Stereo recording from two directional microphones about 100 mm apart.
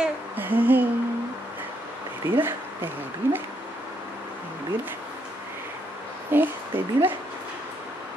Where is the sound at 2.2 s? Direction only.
20° right (ahead or behind).